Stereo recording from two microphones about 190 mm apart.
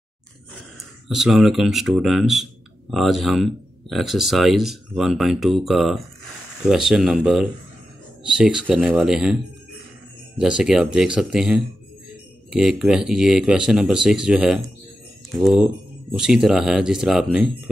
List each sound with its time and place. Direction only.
1.0 s speech: centre (ahead or behind)